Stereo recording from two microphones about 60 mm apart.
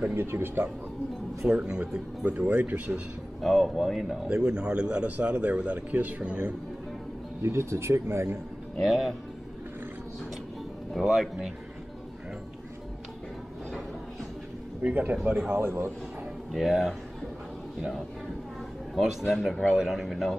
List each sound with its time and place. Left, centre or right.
0.1 s speech: right
1.4 s speech: centre
2.4 s a man's voice: right
3.3 s speech: centre
4.3 s a man's voice: centre
7.4 s speech: right
8.7 s speech: centre
10.9 s speech: centre
14.8 s a man's voice: right
15.5 s speech: right
16.5 s speech: centre
18.9 s speech: centre
19.7 s speech: centre
20.0 s speech: centre